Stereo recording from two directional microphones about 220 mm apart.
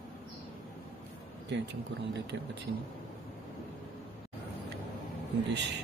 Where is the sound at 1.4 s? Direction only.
55° right (ahead or behind).